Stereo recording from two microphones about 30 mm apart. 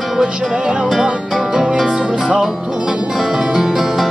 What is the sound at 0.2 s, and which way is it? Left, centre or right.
Music, right.